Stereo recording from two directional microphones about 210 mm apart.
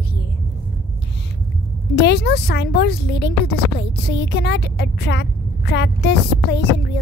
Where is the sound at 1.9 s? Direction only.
55° left (ahead or behind).